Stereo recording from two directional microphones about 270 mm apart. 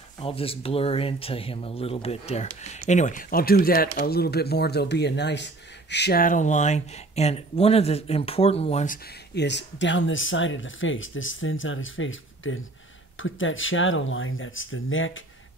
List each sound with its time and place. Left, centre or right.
0.2 s speech: left